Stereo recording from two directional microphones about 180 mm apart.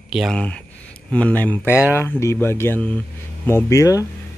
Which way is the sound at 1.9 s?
15° left (ahead or behind).